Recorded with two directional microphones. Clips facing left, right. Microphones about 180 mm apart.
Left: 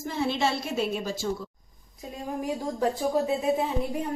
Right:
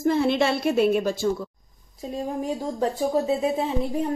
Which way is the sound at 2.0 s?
25° right (ahead or behind).